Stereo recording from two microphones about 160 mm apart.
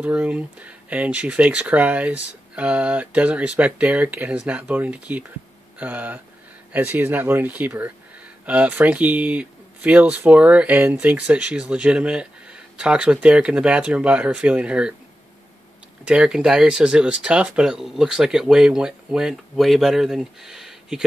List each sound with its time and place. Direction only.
0.0 s speech: 5° right (ahead or behind)
16.1 s speech: 5° right (ahead or behind)